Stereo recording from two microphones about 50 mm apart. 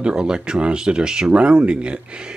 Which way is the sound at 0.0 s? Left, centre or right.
Centre.